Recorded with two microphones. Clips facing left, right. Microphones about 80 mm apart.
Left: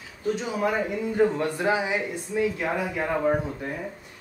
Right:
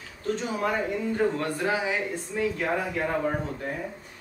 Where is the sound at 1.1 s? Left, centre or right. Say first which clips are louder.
Left 5 dB; centre.